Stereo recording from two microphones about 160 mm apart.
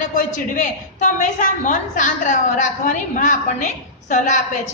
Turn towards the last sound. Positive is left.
turn(degrees=50)  # may be behind; listen again after turning